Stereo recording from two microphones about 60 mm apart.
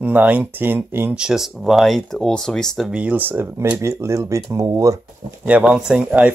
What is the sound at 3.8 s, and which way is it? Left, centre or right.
Speech, right.